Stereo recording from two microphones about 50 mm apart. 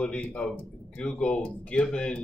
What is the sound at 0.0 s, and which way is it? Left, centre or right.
Speech, left.